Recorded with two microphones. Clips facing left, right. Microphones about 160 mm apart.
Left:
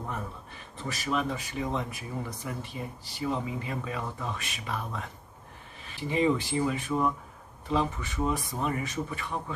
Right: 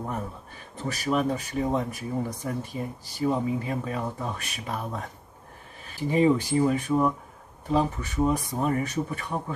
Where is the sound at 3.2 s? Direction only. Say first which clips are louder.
Right 6 dB; 40° right (ahead or behind).